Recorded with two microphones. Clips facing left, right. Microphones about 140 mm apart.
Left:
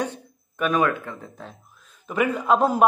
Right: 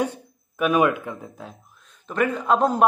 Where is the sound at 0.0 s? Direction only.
10° right (ahead or behind).